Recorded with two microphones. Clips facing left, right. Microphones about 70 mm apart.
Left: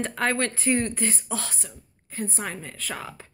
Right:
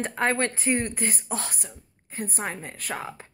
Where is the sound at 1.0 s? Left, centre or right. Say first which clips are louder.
Left 1 dB; right.